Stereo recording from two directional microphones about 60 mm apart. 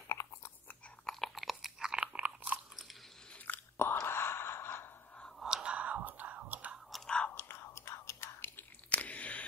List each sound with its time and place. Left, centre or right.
0.1 s chewing: left
1.0 s biting: centre; by 2.6 s right
3.4 s chewing: left
4.1 s gasp: left
5.4 s whispering: centre
7.2 s whispering: left
8.9 s a sound: left